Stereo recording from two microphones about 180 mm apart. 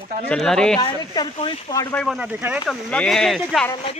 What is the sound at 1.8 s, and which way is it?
Speech, 5° left (ahead or behind).